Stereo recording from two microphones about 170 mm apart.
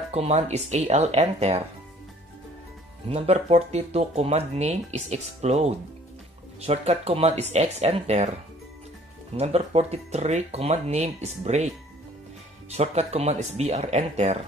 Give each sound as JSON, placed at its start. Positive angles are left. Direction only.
{"t": 0.1, "sound": "speech", "side_deg": -40}
{"t": 3.1, "sound": "speech", "side_deg": -40}
{"t": 9.4, "sound": "speech", "side_deg": -40}
{"t": 12.7, "sound": "speech", "side_deg": -40}